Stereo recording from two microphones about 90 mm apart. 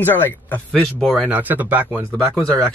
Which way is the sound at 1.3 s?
20° right (ahead or behind).